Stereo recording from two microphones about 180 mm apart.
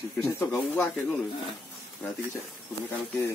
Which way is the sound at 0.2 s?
5° left (ahead or behind).